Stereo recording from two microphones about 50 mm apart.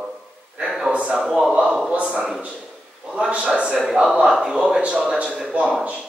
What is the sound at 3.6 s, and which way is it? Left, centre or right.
A man's voice, right.